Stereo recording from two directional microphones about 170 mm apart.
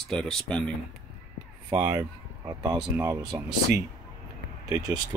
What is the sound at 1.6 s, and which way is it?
Speech, 20° right (ahead or behind).